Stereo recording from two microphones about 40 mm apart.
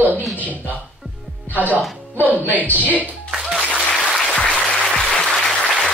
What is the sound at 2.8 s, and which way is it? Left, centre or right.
Speech, right.